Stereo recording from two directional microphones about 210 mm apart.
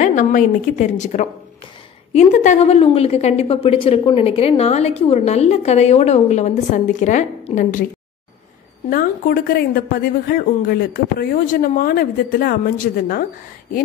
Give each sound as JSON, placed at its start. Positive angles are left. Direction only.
{"t": 0.0, "sound": "a woman's voice", "side_deg": 35}
{"t": 8.9, "sound": "a woman's voice", "side_deg": 40}